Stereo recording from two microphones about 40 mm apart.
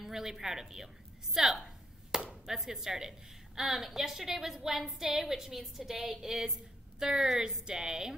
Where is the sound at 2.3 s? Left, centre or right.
Centre.